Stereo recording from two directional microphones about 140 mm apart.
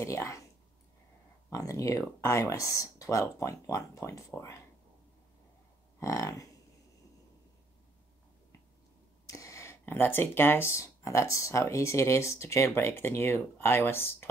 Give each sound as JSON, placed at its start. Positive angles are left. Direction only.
{"t": 0.0, "sound": "a sound", "side_deg": 20}
{"t": 1.5, "sound": "speech", "side_deg": 25}
{"t": 5.9, "sound": "speech", "side_deg": 20}
{"t": 9.3, "sound": "speech", "side_deg": 20}